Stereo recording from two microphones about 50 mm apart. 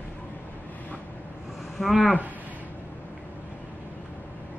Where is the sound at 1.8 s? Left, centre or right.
Centre.